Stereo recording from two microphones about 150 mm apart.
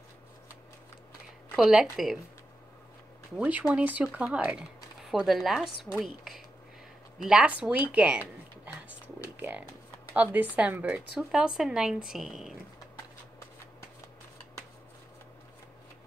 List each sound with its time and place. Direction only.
1.6 s speech: 5° right (ahead or behind)
3.3 s speech: 10° right (ahead or behind)
9.4 s speech: 10° right (ahead or behind)